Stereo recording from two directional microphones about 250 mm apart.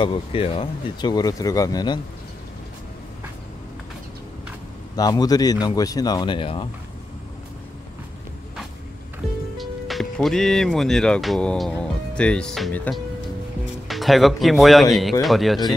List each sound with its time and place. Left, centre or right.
0.0 s speech: left
4.9 s speech: centre
9.6 s speech: centre